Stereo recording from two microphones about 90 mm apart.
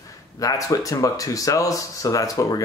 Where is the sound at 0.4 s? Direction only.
40° left (ahead or behind).